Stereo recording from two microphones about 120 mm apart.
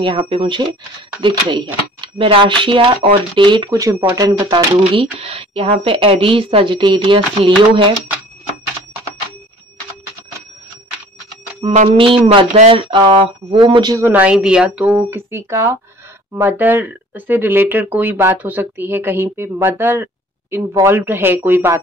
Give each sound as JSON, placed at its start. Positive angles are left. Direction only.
{"t": 0.0, "sound": "speech", "side_deg": -45}
{"t": 3.7, "sound": "speech", "side_deg": -25}
{"t": 5.2, "sound": "speech", "side_deg": -55}
{"t": 11.6, "sound": "speech", "side_deg": -55}
{"t": 13.9, "sound": "speech", "side_deg": -15}
{"t": 19.8, "sound": "a sound", "side_deg": -20}
{"t": 20.7, "sound": "speech", "side_deg": -20}